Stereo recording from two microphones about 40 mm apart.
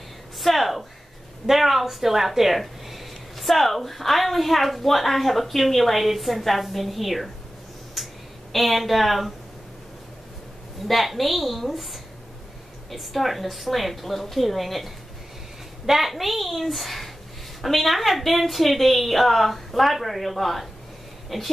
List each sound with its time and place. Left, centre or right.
0.4 s a sound: centre
1.4 s speech: centre
8.0 s a sound: centre
8.5 s speech: centre
10.9 s speech: centre
15.9 s speech: centre